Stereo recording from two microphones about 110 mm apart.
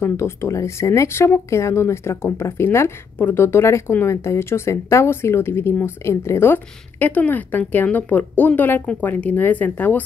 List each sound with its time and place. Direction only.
0.0 s speech: 25° left (ahead or behind)